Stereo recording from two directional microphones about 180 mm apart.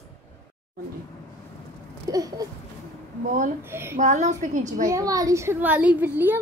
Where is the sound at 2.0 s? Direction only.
20° right (ahead or behind).